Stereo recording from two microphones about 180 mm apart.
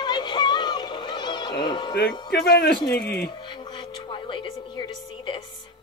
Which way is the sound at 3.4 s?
25° left (ahead or behind).